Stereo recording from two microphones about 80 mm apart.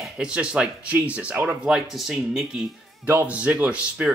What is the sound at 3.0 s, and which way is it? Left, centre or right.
Speech, right.